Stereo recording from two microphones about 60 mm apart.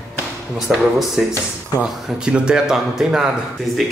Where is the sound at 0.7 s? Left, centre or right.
Centre.